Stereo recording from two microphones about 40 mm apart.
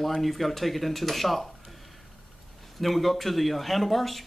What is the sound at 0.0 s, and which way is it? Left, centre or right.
Speech, centre.